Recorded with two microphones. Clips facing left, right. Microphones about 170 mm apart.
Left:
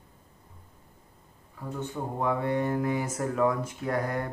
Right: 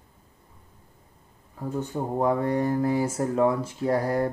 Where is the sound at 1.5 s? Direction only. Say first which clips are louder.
Right 5 dB; 40° right (ahead or behind).